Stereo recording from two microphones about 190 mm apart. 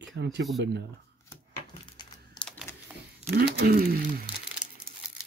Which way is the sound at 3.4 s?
55° right (ahead or behind).